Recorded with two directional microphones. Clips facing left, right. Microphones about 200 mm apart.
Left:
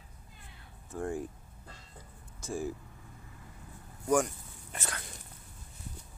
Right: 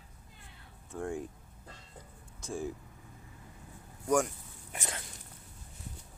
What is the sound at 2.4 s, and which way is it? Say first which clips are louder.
Speech: left 1 dB; 5° left (ahead or behind).